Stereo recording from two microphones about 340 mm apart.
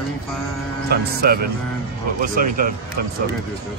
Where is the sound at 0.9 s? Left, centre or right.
Right.